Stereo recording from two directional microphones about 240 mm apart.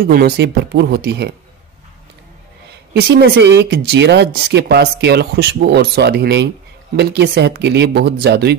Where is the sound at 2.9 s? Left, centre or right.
Right.